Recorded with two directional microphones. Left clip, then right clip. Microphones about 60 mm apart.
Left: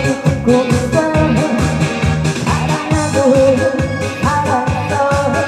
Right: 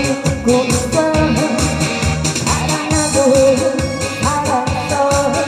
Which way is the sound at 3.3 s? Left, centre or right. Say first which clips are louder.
Left 1 dB; right.